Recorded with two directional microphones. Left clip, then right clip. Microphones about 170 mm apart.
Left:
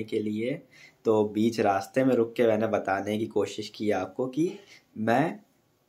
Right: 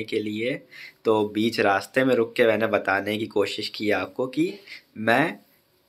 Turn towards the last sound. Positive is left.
turn(degrees=0)  # may be behind; listen again after turning